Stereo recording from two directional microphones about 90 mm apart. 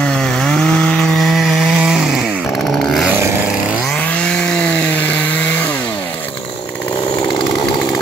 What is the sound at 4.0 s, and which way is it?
Chainsaw, 15° left (ahead or behind).